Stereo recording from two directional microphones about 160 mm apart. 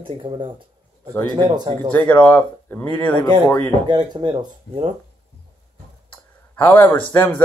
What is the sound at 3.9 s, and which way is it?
Speech, 30° right (ahead or behind).